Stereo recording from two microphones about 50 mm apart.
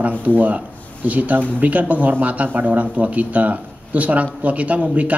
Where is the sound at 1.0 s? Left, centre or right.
Right.